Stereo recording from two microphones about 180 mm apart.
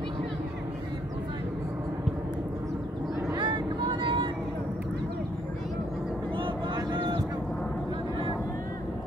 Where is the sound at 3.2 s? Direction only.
15° right (ahead or behind).